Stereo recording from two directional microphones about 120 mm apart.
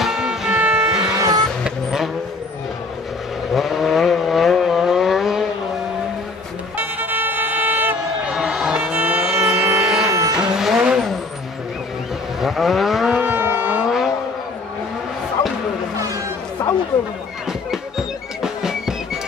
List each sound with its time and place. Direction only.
0.0 s music: 5° right (ahead or behind)
1.6 s vehicle: 5° right (ahead or behind)
3.5 s vehicle: centre (ahead or behind)
6.8 s vehicle: 15° right (ahead or behind)
8.3 s music: 5° right (ahead or behind)
9.2 s vehicle: 5° right (ahead or behind)
12.4 s vehicle: centre (ahead or behind)
13.8 s vehicle: centre (ahead or behind)
17.5 s music: 5° right (ahead or behind)